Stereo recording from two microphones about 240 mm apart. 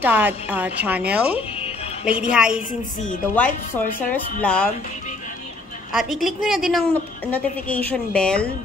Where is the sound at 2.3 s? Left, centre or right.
Centre.